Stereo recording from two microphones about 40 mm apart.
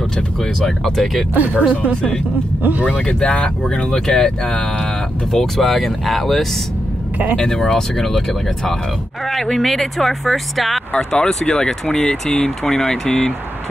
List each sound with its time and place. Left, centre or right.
0.6 s speech: centre
1.3 s speech: right
2.9 s speech: left
5.3 s speech: centre
7.3 s speech: centre
10.9 s speech: centre